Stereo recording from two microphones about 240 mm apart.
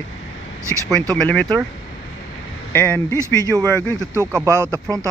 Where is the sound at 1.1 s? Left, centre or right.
Centre.